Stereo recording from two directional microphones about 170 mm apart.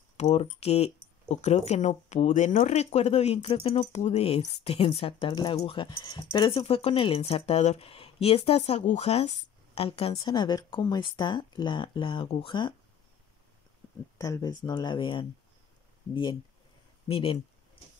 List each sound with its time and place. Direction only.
0.2 s speech: 35° left (ahead or behind)
14.1 s speech: 20° left (ahead or behind)